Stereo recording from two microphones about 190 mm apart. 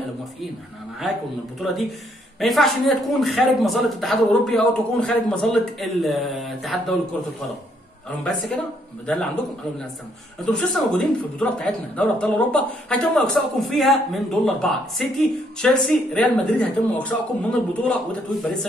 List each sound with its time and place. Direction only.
1.6 s speech: centre (ahead or behind)
9.0 s speech: 5° left (ahead or behind)
10.4 s speech: 5° left (ahead or behind)